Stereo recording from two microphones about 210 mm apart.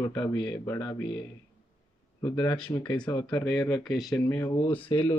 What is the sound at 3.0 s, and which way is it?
Speech, 20° left (ahead or behind).